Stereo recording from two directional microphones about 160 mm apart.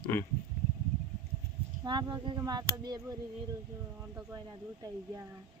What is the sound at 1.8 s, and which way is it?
Speech, 25° right (ahead or behind).